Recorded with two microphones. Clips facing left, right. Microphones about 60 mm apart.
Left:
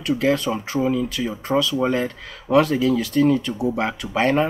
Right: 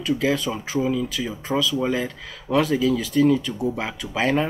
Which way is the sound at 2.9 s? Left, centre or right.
Left.